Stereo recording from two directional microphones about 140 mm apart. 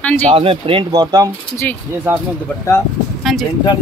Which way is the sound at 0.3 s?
40° right (ahead or behind).